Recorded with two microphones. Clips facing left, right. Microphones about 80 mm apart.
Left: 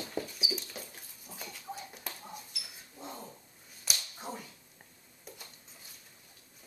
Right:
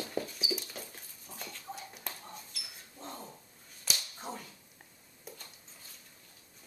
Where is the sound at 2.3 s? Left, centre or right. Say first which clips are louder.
Left 1 dB; centre.